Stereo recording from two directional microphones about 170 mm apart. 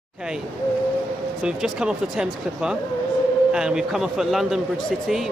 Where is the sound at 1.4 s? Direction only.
5° right (ahead or behind).